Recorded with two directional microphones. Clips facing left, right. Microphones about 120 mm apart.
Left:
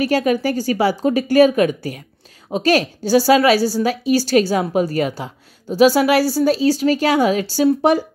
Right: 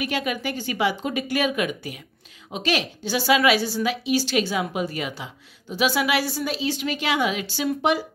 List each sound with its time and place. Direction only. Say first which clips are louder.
0.0 s a woman's voice: left 9 dB; 40° left (ahead or behind)